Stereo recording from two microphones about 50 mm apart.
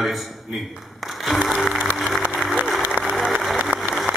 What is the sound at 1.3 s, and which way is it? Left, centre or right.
Music, centre.